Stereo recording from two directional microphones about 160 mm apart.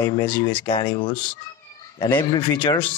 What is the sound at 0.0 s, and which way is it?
Speech, 30° left (ahead or behind).